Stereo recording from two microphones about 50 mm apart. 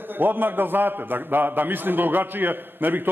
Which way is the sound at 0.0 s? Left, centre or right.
Right.